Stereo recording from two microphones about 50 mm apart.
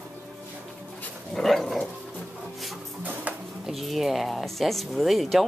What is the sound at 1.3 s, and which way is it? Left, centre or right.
Dog, centre.